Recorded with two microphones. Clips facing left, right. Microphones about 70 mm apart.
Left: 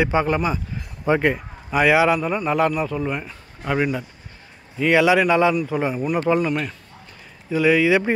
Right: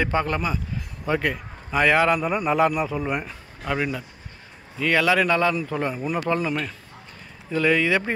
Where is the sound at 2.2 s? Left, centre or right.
Centre.